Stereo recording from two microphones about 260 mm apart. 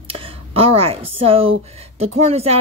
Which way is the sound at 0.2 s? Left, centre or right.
Right.